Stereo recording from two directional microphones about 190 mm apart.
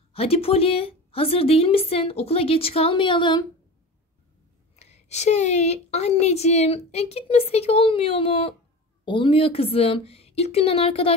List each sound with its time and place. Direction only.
0.1 s a woman's voice: 30° left (ahead or behind)
4.7 s a woman's voice: 35° left (ahead or behind)